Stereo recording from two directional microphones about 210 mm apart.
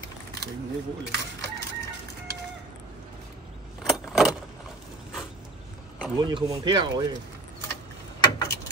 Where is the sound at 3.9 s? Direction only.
Centre (ahead or behind).